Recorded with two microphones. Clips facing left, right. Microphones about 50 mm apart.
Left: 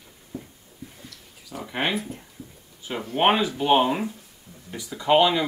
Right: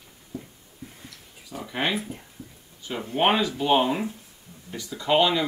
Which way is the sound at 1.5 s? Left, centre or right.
Centre.